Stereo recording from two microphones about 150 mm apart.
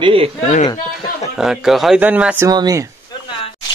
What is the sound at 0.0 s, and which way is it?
Speech, 40° right (ahead or behind).